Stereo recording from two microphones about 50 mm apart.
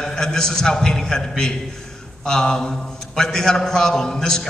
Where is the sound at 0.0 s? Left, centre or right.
Centre.